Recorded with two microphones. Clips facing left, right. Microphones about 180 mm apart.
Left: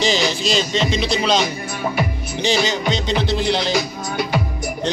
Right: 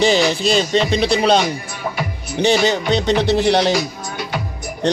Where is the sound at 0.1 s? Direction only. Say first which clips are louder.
Right 4 dB; 60° right (ahead or behind).